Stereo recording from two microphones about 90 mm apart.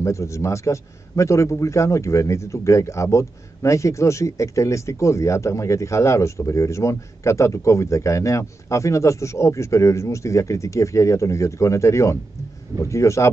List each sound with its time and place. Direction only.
0.0 s a man's voice: 35° left (ahead or behind)